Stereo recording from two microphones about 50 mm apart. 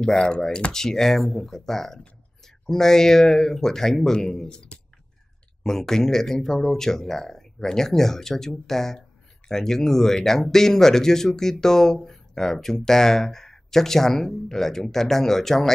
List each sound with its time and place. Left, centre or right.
0.0 s speech: centre